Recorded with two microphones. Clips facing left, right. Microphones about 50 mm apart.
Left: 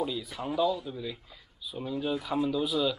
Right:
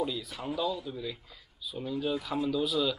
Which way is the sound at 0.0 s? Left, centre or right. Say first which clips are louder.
Left 1 dB; centre.